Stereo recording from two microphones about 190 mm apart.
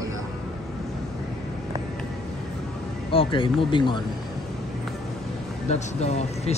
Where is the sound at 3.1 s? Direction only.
25° left (ahead or behind).